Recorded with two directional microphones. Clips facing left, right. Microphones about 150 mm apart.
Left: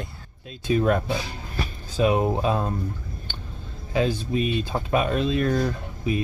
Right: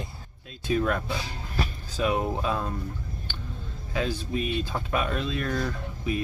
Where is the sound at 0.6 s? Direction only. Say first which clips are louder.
Left 5 dB; 25° left (ahead or behind).